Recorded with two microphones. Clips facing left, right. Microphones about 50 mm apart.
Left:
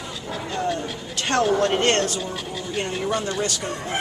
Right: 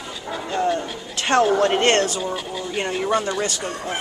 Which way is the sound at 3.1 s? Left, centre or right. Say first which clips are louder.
Right 5 dB; centre.